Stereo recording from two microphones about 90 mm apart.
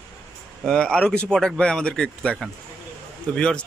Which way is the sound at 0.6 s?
10° left (ahead or behind).